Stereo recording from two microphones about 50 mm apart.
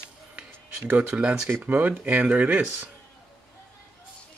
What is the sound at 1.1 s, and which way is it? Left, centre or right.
Speech, right.